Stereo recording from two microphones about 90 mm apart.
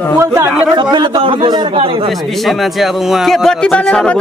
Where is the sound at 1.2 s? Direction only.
70° right (ahead or behind).